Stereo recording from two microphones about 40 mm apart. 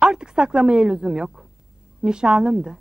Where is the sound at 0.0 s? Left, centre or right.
Centre.